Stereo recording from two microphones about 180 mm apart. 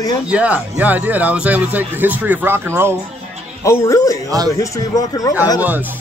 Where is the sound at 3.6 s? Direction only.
15° left (ahead or behind).